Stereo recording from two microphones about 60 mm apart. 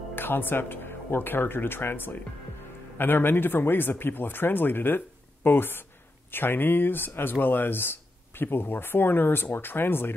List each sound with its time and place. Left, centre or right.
0.1 s speech: left